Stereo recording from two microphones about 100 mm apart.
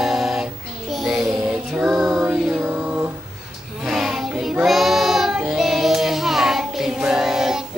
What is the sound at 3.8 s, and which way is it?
Child singing, 5° right (ahead or behind).